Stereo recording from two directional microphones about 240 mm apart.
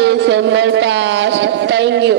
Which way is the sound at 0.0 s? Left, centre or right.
Right.